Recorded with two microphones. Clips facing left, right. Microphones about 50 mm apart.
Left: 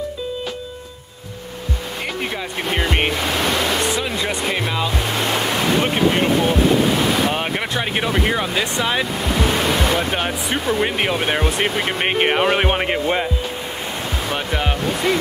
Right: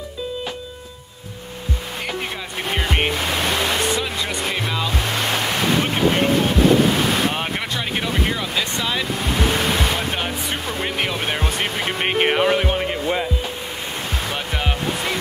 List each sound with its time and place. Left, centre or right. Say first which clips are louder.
2.7 s music: left 2 dB; centre
3.6 s a sound: left 1 dB; left
4.5 s music: left 2 dB; left
4.8 s ocean: left 1 dB; left
7.9 s speech: left 3 dB; centre
9.9 s speech: left 3 dB; centre
12.5 s speech: left 3 dB; left
14.3 s music: left 5 dB; centre